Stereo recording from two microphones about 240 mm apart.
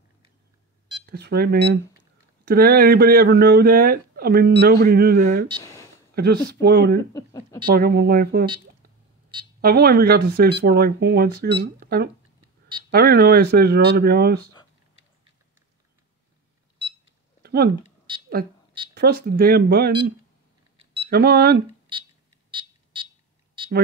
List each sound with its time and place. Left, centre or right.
1.0 s speech: right
5.6 s a sound: centre
6.1 s speech: right
9.6 s speech: right
17.4 s a sound: right
18.9 s speech: right
21.1 s speech: right
22.5 s smoke detector: centre